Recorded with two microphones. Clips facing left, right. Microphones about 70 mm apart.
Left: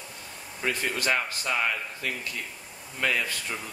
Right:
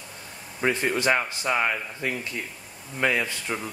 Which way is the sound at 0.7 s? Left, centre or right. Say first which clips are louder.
Right 5 dB; right.